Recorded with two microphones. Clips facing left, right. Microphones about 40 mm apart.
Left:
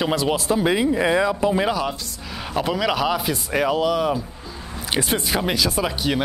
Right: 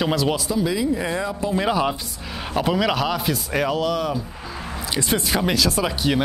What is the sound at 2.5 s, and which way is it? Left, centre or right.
Speech, centre.